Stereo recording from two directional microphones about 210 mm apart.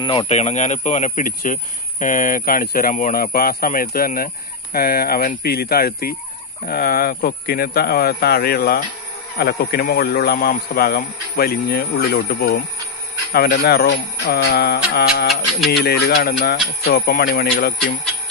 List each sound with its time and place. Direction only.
0.0 s speech: 25° left (ahead or behind); by 17.7 s 45° left (ahead or behind)